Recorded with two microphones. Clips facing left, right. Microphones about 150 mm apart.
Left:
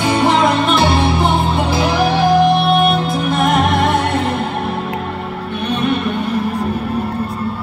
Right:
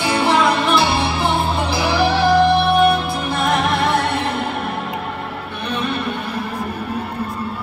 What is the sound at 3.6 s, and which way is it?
Music, 50° left (ahead or behind).